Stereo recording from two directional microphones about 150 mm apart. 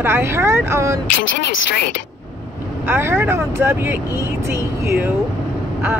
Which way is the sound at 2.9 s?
15° right (ahead or behind).